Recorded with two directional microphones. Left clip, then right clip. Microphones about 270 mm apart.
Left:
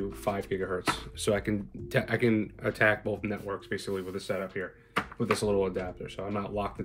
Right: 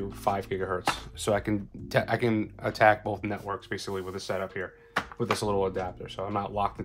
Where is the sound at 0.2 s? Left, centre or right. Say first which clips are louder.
Right 4 dB; right.